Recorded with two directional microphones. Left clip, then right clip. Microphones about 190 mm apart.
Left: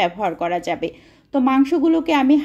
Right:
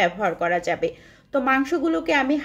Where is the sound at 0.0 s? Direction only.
25° left (ahead or behind).